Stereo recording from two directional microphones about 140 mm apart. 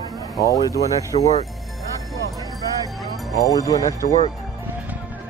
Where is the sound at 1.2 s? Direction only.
50° left (ahead or behind).